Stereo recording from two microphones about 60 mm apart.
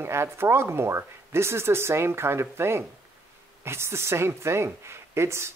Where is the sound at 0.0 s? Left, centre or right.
Right.